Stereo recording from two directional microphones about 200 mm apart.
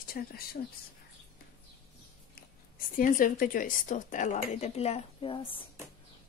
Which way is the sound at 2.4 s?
45° left (ahead or behind).